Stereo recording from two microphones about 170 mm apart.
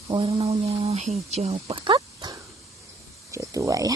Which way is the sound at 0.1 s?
30° right (ahead or behind).